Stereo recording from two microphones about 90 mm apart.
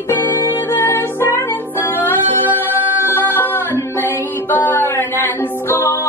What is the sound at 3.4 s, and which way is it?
Music, 25° left (ahead or behind).